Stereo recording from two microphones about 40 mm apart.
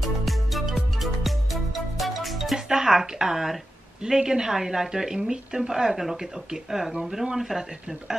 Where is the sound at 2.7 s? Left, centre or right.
Centre.